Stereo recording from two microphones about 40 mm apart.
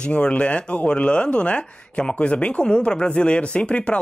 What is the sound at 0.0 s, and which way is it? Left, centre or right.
Speech, left.